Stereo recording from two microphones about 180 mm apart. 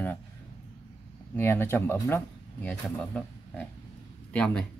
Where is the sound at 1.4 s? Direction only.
10° left (ahead or behind).